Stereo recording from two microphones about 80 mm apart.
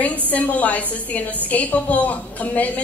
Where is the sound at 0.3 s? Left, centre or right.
Centre.